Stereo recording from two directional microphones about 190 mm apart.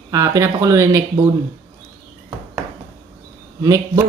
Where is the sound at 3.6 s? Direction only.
15° right (ahead or behind).